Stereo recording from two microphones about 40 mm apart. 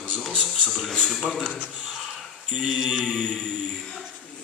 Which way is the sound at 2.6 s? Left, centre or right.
Centre.